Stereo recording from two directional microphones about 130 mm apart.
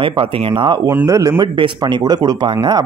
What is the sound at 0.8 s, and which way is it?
Speech, 25° right (ahead or behind).